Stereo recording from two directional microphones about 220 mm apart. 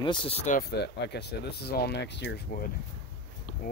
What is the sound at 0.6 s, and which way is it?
Speech, 50° left (ahead or behind).